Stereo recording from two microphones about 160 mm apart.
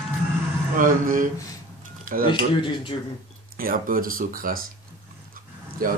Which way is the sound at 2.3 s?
30° left (ahead or behind).